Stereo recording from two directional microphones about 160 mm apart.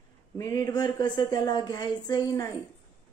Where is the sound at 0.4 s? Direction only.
20° left (ahead or behind).